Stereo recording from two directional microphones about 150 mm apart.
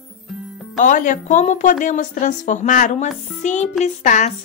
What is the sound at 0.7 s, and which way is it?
A woman's voice, 60° left (ahead or behind).